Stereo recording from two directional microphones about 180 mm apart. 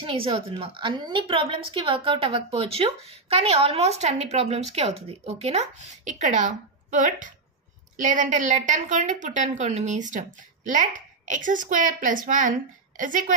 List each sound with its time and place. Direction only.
0.0 s a woman's voice: 30° right (ahead or behind); by 13.2 s 45° right (ahead or behind)